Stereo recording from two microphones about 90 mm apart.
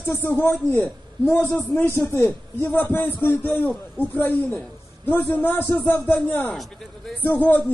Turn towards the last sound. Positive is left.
turn(degrees=20)  # may be behind; listen again after turning